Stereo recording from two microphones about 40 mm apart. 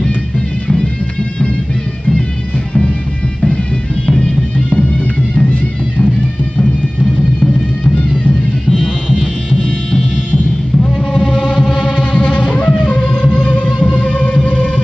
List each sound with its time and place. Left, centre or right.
4.0 s music: left
8.6 s music: centre
9.6 s music: left
11.1 s hum: left
11.8 s music: left